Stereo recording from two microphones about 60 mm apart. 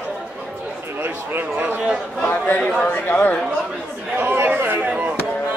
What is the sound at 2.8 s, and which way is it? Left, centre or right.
Speech, left.